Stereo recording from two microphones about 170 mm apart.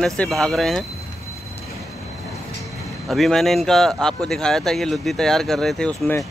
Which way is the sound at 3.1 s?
Centre (ahead or behind).